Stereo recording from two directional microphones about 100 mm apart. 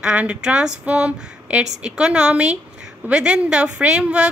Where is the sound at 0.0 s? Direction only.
10° right (ahead or behind).